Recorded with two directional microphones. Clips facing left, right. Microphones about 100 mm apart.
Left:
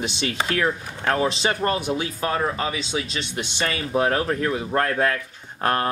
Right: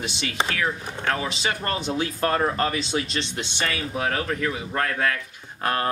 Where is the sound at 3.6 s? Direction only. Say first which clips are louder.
Left 5 dB; 30° left (ahead or behind).